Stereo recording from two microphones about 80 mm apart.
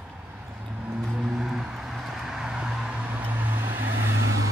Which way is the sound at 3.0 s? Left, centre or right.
Right.